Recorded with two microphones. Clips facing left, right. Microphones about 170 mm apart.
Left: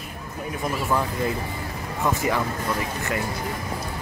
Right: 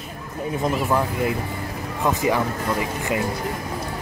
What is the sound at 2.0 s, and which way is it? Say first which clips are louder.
Speech: right 3 dB; 15° right (ahead or behind).